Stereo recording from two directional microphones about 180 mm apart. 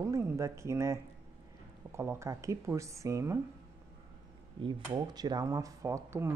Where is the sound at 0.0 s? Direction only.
15° right (ahead or behind).